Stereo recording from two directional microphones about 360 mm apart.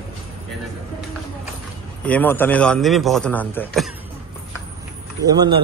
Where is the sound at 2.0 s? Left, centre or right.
Centre.